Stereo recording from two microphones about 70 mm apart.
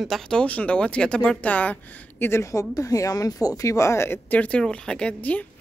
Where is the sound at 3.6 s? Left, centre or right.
Left.